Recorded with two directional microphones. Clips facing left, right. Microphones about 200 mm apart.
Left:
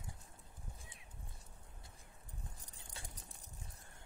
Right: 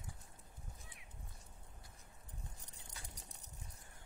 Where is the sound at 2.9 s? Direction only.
30° left (ahead or behind).